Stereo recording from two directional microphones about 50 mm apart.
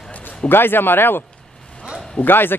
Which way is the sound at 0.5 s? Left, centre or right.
Left.